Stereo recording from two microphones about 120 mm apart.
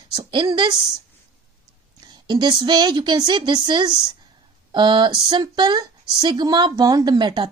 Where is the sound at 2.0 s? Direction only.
40° right (ahead or behind).